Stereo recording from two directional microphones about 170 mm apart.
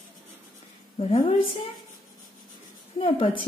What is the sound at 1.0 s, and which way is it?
Speech, 35° left (ahead or behind).